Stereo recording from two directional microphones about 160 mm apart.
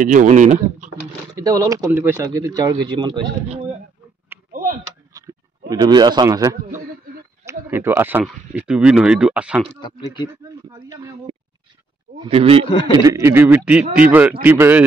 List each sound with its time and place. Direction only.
0.0 s speech: 55° right (ahead or behind)
1.3 s speech: 20° right (ahead or behind)
4.5 s a sound: 60° right (ahead or behind)
5.1 s a sound: 20° right (ahead or behind)
5.7 s speech: 25° right (ahead or behind); by 9.6 s 5° right (ahead or behind)
9.8 s speech: 30° left (ahead or behind)
10.3 s a sound: 15° right (ahead or behind)
12.2 s speech: 35° right (ahead or behind)
12.6 s a man's voice: 35° left (ahead or behind)
13.0 s speech: 20° right (ahead or behind)